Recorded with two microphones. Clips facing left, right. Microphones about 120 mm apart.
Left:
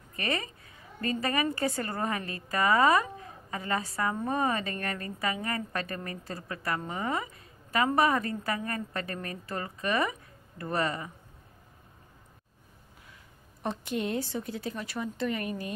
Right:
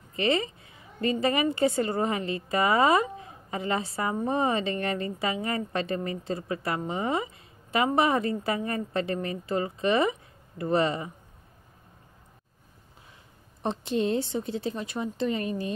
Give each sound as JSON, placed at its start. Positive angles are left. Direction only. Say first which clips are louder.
{"t": 0.1, "sound": "a woman's voice", "louder": "right 7 dB", "side_deg": -25}
{"t": 13.6, "sound": "a woman's voice", "louder": "right 5 dB", "side_deg": -25}